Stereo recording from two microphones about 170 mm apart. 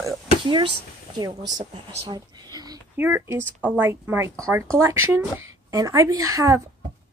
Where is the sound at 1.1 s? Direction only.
25° right (ahead or behind).